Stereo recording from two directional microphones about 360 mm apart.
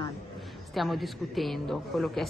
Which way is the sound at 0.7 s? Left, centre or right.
Centre.